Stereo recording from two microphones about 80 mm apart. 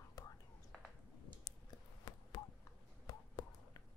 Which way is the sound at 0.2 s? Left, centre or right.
Left.